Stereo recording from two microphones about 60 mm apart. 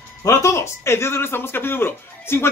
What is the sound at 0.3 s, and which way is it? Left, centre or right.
Speech, left.